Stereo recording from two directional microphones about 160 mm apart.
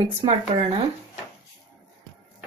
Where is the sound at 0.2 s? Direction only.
35° right (ahead or behind).